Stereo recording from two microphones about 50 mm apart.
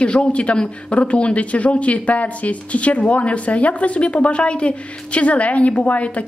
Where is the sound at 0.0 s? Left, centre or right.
Left.